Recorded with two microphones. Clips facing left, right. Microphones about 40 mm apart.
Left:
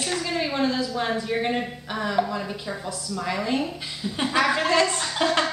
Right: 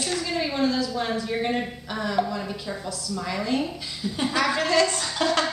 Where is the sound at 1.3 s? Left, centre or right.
Centre.